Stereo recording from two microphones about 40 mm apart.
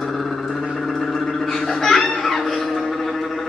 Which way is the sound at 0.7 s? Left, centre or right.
Centre.